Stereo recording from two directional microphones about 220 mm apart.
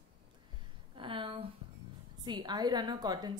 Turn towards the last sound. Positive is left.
turn(degrees=-15)  # may be behind; listen again after turning